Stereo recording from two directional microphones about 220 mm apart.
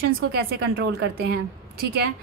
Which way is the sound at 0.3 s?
45° right (ahead or behind).